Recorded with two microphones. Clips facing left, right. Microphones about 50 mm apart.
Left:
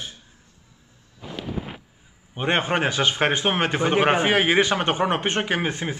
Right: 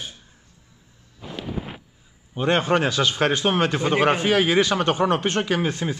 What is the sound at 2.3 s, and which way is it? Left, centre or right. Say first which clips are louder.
Speech: right 2 dB; left.